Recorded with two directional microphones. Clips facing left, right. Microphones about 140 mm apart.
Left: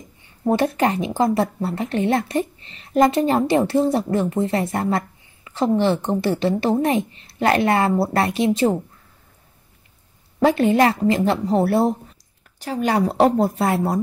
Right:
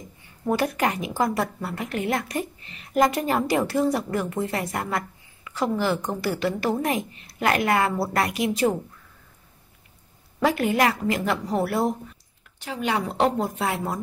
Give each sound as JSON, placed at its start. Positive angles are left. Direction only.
{"t": 0.5, "sound": "speech", "side_deg": 25}
{"t": 10.4, "sound": "speech", "side_deg": 25}
{"t": 12.5, "sound": "speech", "side_deg": 40}